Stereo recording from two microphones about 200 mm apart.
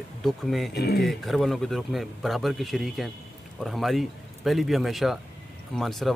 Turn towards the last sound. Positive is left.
turn(degrees=0)  # may be behind; listen again after turning